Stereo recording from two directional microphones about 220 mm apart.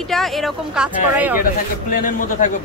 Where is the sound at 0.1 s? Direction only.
Centre (ahead or behind).